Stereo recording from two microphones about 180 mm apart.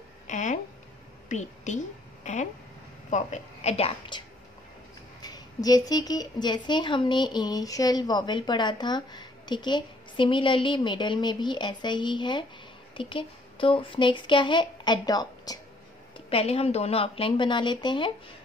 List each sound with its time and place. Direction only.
0.3 s a sound: 45° left (ahead or behind)
1.3 s a woman's voice: 40° left (ahead or behind)
5.2 s a woman's voice: 20° left (ahead or behind)
16.3 s speech: 35° left (ahead or behind)